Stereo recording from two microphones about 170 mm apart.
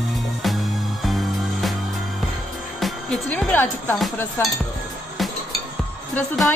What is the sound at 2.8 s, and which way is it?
Music, 5° left (ahead or behind).